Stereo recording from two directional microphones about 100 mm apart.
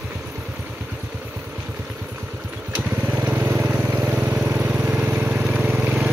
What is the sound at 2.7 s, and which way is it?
Vehicle, 20° right (ahead or behind).